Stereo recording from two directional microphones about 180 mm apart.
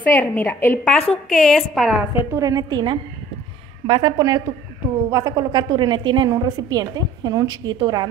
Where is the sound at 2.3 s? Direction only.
20° right (ahead or behind).